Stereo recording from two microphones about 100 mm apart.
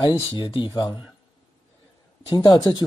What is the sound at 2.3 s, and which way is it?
Speech, 45° left (ahead or behind).